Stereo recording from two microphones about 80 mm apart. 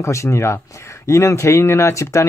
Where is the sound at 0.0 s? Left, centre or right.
Left.